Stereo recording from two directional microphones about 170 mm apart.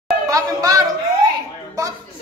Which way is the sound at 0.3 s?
20° right (ahead or behind).